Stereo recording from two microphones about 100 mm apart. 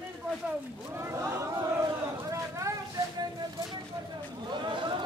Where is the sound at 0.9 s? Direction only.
30° right (ahead or behind).